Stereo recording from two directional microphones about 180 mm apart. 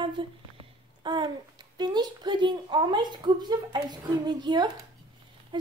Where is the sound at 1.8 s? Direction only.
25° right (ahead or behind).